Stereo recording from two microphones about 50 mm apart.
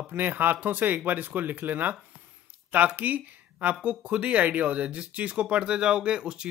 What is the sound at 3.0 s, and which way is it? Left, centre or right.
Speech, right.